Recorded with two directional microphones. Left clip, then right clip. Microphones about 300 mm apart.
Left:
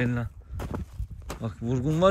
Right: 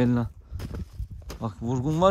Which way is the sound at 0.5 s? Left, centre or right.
Centre.